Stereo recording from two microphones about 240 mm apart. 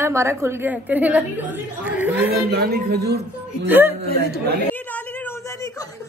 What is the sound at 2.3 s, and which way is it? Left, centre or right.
Speech, right.